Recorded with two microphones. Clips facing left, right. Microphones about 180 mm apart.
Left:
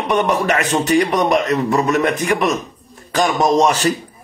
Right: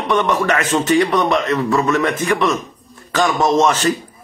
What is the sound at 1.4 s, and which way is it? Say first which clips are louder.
Speech: even; 40° left (ahead or behind).